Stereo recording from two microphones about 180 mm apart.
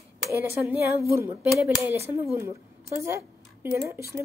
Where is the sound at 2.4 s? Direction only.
15° right (ahead or behind).